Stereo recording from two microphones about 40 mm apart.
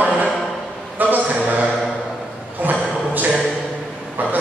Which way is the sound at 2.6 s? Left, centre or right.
Right.